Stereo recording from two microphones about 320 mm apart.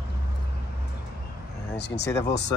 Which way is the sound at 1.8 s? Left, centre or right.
Left.